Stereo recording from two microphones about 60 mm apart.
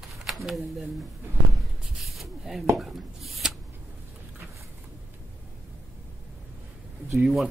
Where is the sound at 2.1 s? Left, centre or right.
Centre.